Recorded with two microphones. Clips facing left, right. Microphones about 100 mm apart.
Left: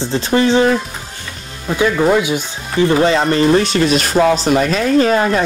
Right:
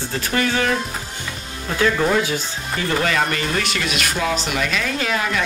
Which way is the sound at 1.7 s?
15° left (ahead or behind).